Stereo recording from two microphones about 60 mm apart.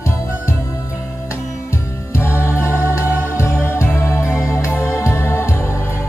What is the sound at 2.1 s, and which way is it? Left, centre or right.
Music, left.